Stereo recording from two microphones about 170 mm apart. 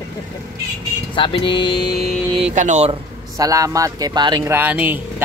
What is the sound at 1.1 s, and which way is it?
Speech, 30° left (ahead or behind).